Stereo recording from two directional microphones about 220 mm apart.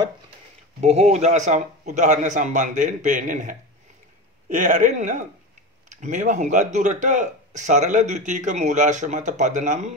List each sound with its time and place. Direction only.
0.7 s a man's voice: 30° right (ahead or behind)